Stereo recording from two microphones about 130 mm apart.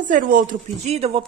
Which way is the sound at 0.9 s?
50° right (ahead or behind).